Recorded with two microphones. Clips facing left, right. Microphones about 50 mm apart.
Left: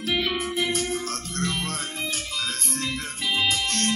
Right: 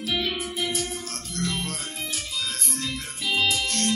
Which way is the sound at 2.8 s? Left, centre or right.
Left.